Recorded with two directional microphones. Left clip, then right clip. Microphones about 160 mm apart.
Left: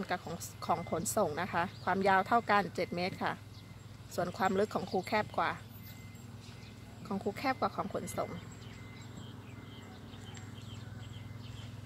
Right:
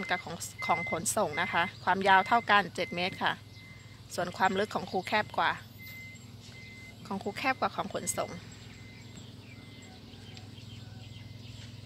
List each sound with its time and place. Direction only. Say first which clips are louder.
0.0 s speech: right 4 dB; centre (ahead or behind)
7.1 s speech: right 2 dB; centre (ahead or behind)
7.8 s speech: right 3 dB; 15° right (ahead or behind)